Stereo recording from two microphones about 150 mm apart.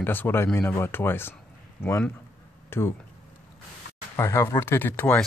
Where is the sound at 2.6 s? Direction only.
15° left (ahead or behind).